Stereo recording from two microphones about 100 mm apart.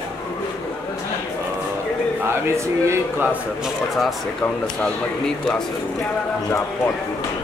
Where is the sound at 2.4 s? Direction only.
30° right (ahead or behind).